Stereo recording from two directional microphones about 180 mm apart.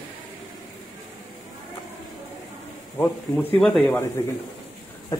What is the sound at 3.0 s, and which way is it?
Speech, 10° left (ahead or behind).